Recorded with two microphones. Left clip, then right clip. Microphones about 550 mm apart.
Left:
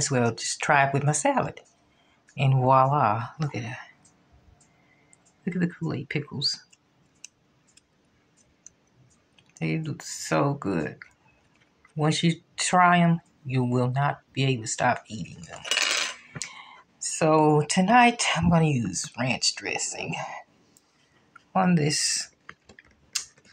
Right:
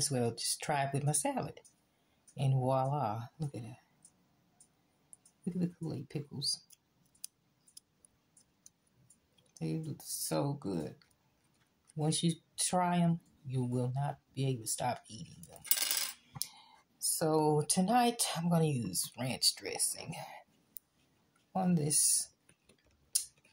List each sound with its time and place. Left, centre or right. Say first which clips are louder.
0.0 s speech: left 9 dB; right
5.4 s speech: left 10 dB; right
9.6 s speech: left 10 dB; right
17.2 s speech: left 10 dB; right
21.5 s speech: left 11 dB; right
22.8 s typing: left 19 dB; right